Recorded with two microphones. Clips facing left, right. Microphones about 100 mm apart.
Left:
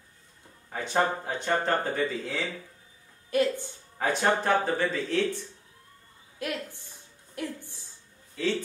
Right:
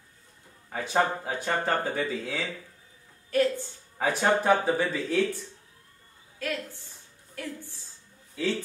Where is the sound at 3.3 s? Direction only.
15° left (ahead or behind).